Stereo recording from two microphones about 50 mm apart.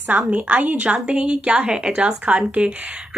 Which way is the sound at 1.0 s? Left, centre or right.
Centre.